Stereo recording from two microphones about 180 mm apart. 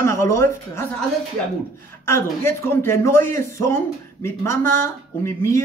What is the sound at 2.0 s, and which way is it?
Speech, 15° left (ahead or behind).